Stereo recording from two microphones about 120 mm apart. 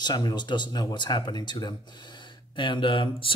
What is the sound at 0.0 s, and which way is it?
Speech, 35° left (ahead or behind).